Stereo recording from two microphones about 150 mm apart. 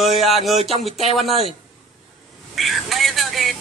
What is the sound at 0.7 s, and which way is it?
Speech, 45° left (ahead or behind).